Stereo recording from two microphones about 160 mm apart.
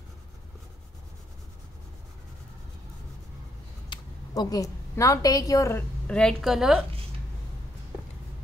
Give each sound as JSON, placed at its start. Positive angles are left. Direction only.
{"t": 4.3, "sound": "a woman's voice", "side_deg": 25}